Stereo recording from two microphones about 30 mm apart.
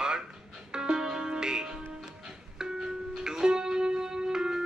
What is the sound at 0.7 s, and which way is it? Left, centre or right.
Music, right.